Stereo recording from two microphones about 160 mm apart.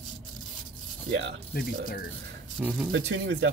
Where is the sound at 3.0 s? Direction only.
90° right.